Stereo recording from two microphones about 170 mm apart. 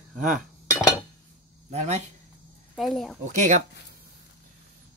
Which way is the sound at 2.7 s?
Centre (ahead or behind).